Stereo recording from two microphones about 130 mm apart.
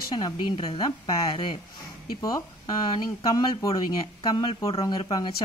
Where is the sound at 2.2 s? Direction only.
30° left (ahead or behind).